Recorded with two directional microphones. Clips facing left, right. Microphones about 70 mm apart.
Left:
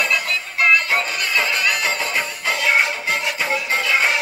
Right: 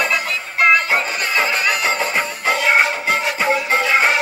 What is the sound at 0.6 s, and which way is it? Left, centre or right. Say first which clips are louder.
Music: right 3 dB; right.